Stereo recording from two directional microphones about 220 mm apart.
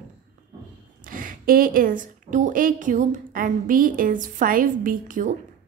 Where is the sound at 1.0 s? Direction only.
40° right (ahead or behind).